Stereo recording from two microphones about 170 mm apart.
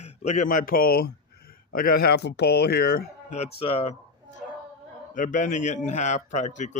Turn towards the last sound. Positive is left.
turn(degrees=45)  # may be behind; listen again after turning